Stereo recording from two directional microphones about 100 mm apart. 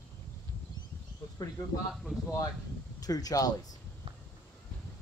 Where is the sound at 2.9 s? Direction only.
40° left (ahead or behind).